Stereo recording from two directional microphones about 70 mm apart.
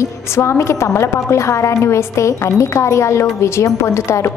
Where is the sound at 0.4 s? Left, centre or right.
Left.